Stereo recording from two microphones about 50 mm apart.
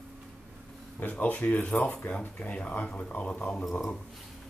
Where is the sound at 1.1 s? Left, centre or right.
Left.